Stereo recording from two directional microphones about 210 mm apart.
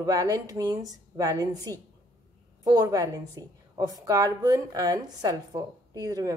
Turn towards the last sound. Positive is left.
turn(degrees=-15)  # may be behind; listen again after turning